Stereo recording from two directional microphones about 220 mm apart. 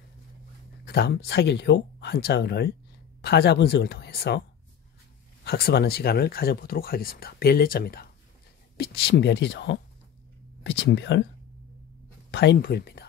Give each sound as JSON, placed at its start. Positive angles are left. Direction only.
{"t": 0.8, "sound": "speech", "side_deg": 45}
{"t": 5.4, "sound": "speech", "side_deg": 45}
{"t": 10.8, "sound": "speech", "side_deg": 50}
{"t": 12.3, "sound": "speech", "side_deg": 50}